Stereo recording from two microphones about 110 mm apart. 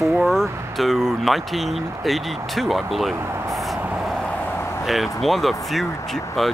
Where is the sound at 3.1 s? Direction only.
20° right (ahead or behind).